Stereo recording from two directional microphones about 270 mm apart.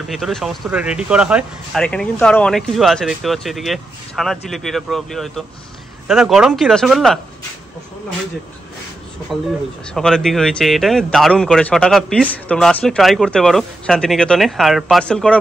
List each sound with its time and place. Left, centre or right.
0.1 s speech: centre
9.9 s speech: centre